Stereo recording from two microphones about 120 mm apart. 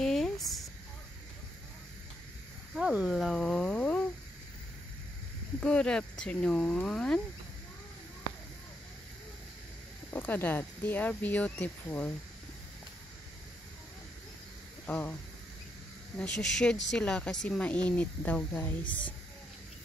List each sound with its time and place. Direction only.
0.0 s a sound: 5° left (ahead or behind)
3.1 s a sound: centre (ahead or behind)
5.6 s speech: 10° left (ahead or behind)
10.1 s speech: 15° left (ahead or behind)
14.9 s speech: 15° left (ahead or behind)
16.2 s speech: 5° left (ahead or behind)
18.9 s speech: 45° left (ahead or behind)